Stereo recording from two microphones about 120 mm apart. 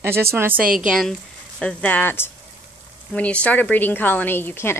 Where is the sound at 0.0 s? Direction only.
20° right (ahead or behind).